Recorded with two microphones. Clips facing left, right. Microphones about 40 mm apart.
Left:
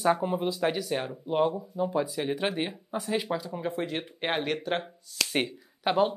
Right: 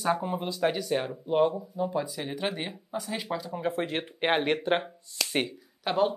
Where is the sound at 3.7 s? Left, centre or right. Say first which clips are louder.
Right 1 dB; right.